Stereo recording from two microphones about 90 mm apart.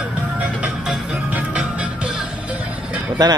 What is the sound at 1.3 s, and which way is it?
Music, 10° right (ahead or behind).